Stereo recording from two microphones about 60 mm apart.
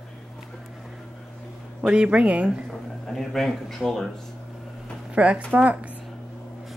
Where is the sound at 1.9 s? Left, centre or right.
Centre.